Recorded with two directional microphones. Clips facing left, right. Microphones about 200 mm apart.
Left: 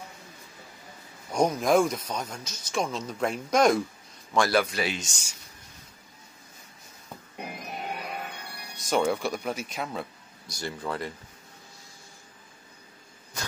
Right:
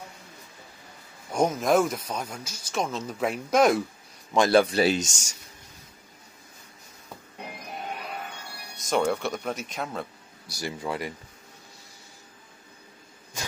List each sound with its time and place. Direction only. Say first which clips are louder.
1.4 s speech: even; centre (ahead or behind)
4.3 s speech: right 4 dB; 25° right (ahead or behind); by 5.3 s 45° right (ahead or behind)
8.7 s speech: even; centre (ahead or behind)
10.5 s speech: right 1 dB; 10° right (ahead or behind)